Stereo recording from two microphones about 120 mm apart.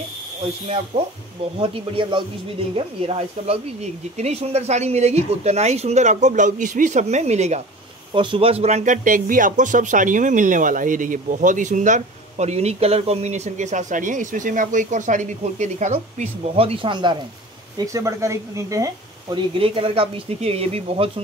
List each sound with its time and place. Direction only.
1.6 s speech: 45° right (ahead or behind)
2.7 s speech: 55° right (ahead or behind)
8.1 s speech: 45° right (ahead or behind); by 16.3 s 85° right
16.5 s speech: 50° right (ahead or behind)
17.7 s speech: 25° right (ahead or behind)
19.3 s speech: 45° right (ahead or behind)